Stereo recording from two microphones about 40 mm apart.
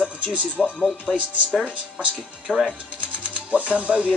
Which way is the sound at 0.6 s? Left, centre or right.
Centre.